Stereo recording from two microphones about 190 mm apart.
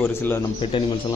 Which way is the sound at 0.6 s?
25° left (ahead or behind).